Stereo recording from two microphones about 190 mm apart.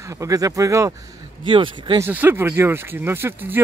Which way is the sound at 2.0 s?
10° right (ahead or behind).